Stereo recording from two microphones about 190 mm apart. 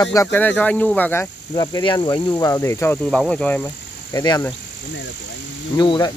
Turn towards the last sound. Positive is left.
turn(degrees=25)  # may be behind; listen again after turning